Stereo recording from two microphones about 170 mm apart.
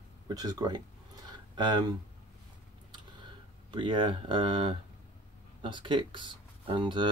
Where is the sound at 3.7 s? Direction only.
30° right (ahead or behind).